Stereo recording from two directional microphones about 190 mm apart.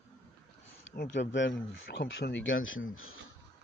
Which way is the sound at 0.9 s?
40° left (ahead or behind).